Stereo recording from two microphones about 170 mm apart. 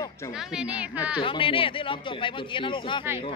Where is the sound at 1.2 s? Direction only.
30° left (ahead or behind).